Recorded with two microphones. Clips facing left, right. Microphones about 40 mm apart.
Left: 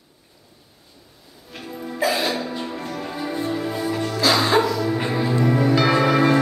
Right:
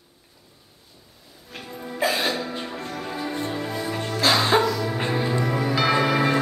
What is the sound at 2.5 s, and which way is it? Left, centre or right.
Music, centre.